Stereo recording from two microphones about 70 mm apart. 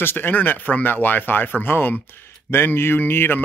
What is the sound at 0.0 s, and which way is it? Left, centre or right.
Speech, left.